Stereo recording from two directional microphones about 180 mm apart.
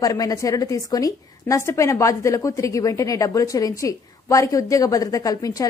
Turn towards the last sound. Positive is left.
turn(degrees=20)  # may be behind; listen again after turning